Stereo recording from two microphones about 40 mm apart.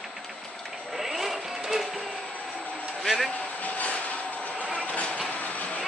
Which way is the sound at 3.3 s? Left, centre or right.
Left.